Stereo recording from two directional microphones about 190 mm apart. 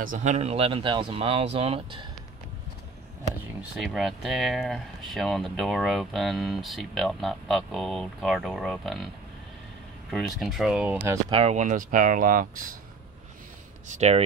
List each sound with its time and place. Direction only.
0.0 s speech: 40° right (ahead or behind)
3.7 s speech: centre (ahead or behind)
10.1 s speech: centre (ahead or behind)
11.2 s speech: 30° right (ahead or behind)
13.9 s speech: 35° right (ahead or behind)